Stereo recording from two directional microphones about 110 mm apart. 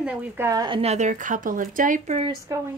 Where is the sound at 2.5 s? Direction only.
30° right (ahead or behind).